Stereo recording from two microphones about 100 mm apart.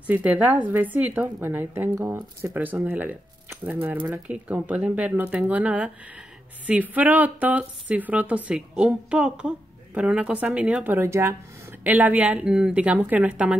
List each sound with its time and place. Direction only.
0.0 s a woman's voice: 15° right (ahead or behind)